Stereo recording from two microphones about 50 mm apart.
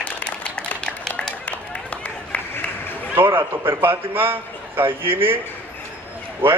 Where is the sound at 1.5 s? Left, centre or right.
Left.